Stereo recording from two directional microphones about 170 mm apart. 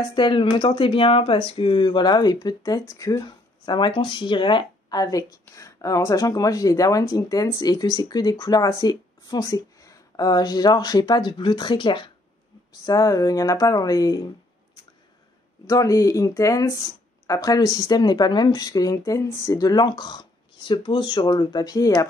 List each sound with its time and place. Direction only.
0.1 s speech: 30° left (ahead or behind)
15.6 s speech: 20° left (ahead or behind)